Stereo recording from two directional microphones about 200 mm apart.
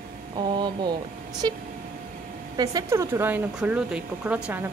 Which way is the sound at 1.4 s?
20° right (ahead or behind).